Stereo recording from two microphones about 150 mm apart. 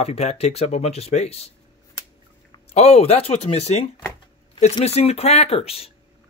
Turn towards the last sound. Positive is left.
turn(degrees=40)  # may be behind; listen again after turning